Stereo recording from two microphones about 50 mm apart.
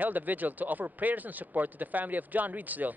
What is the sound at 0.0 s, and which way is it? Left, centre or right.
Speech, right.